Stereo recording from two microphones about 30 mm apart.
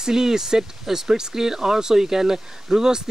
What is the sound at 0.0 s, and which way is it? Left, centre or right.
Speech, centre.